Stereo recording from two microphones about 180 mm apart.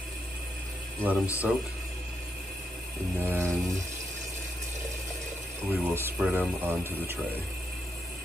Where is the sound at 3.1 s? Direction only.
15° right (ahead or behind).